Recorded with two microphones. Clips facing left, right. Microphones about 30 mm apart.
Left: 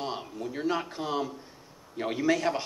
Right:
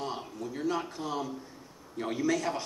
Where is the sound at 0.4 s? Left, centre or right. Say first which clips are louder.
Left 2 dB; left.